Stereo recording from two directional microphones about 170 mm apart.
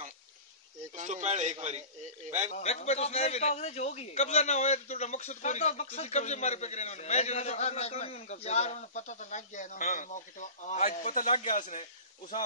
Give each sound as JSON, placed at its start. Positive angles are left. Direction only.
{"t": 0.9, "sound": "a man's voice", "side_deg": -45}
{"t": 2.5, "sound": "a man's voice", "side_deg": 40}